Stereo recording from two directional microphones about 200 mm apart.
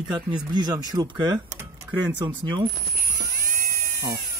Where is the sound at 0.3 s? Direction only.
20° right (ahead or behind).